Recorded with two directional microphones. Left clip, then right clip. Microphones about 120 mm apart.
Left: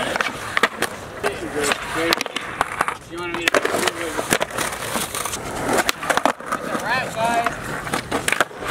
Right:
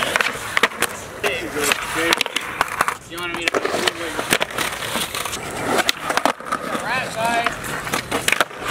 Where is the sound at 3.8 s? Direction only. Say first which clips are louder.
Right 1 dB; 5° left (ahead or behind).